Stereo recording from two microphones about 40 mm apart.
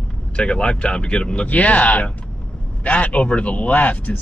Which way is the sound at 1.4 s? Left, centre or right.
Left.